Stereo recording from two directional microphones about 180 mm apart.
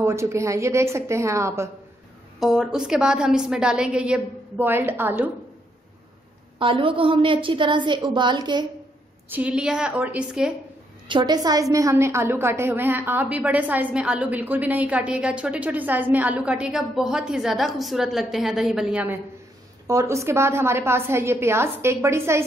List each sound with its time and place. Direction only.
0.0 s a woman's voice: 15° right (ahead or behind)
2.4 s a woman's voice: centre (ahead or behind)
6.6 s a woman's voice: 30° right (ahead or behind)
9.3 s a woman's voice: 5° right (ahead or behind)
11.1 s a woman's voice: 25° right (ahead or behind); by 19.1 s 5° right (ahead or behind)
19.9 s a woman's voice: 15° right (ahead or behind)